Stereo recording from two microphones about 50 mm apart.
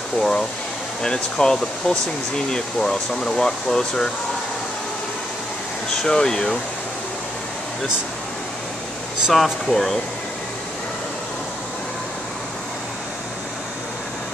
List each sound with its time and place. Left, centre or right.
0.2 s speech: centre
6.0 s speech: centre
9.3 s speech: centre